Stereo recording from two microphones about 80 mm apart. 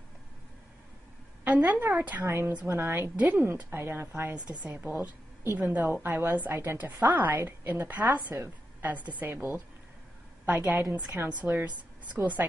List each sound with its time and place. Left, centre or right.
1.4 s a woman's voice: centre
2.2 s a woman's voice: right